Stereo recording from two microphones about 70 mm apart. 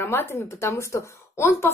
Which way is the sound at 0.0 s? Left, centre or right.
Left.